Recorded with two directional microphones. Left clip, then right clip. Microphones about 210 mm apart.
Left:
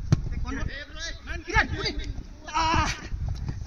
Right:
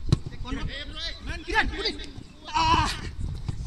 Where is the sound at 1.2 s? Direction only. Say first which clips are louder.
Left 1 dB; 10° left (ahead or behind).